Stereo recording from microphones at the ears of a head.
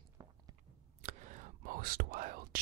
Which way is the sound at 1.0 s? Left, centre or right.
Right.